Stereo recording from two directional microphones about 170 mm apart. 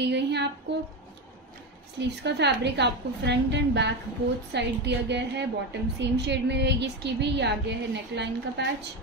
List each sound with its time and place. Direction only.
0.0 s a woman's voice: 85° right
2.0 s a woman's voice: 90° right